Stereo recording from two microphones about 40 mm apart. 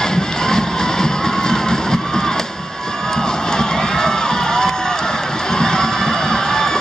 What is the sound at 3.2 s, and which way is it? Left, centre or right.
Crowd, centre.